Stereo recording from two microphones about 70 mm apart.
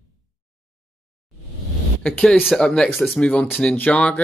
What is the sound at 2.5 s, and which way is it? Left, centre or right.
Speech, centre.